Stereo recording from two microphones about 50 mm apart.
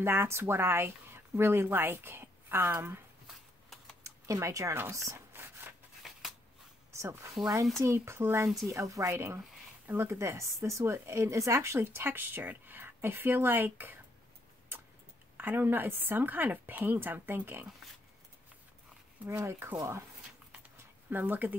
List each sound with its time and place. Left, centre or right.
0.0 s speech: right
4.0 s a sound: right
4.9 s a woman's voice: right
5.3 s a sound: right
6.0 s a sound: centre
6.9 s speech: right
8.5 s speech: centre
8.7 s a woman's voice: right
9.8 s speech: right
11.8 s speech: right
15.3 s a woman's voice: right
19.2 s speech: right
21.1 s a woman's voice: right